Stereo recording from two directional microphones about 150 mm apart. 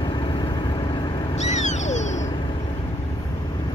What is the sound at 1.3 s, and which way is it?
Owl, 50° left (ahead or behind).